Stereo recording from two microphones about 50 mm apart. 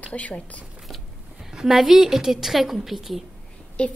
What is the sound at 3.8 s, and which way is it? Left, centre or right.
Speech, left.